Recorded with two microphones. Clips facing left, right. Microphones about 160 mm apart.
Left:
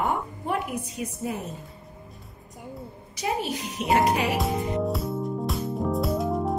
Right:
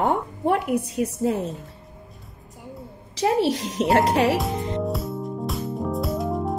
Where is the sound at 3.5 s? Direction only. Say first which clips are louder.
Right 7 dB; 90° right.